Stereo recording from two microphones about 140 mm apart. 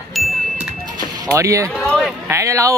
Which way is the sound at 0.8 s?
30° right (ahead or behind).